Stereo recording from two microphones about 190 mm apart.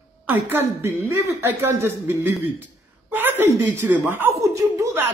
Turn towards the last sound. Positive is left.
turn(degrees=-15)  # may be behind; listen again after turning